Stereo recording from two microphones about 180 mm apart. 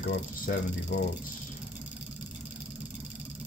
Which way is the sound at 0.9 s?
70° left (ahead or behind).